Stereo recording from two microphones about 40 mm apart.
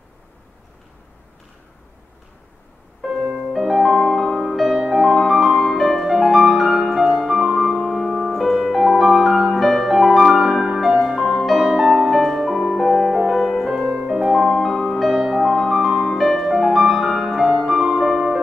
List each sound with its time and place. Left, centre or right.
3.2 s music: right
3.7 s music: centre
4.1 s music: centre
5.6 s music: centre
11.8 s music: centre
12.1 s music: centre
17.7 s music: centre